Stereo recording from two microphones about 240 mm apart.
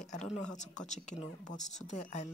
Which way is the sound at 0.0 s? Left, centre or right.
Left.